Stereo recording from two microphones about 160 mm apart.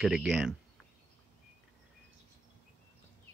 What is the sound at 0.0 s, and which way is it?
Speech, centre (ahead or behind).